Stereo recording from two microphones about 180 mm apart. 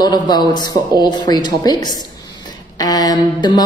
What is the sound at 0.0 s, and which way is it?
Speech, 25° left (ahead or behind).